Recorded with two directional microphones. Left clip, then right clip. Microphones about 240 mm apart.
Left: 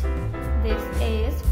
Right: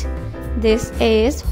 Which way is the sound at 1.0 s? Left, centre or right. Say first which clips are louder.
Right 13 dB; right.